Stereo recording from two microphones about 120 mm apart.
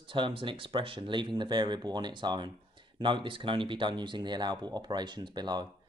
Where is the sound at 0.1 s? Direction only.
45° right (ahead or behind).